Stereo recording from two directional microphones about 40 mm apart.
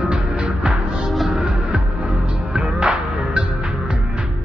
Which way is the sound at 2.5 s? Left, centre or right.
Right.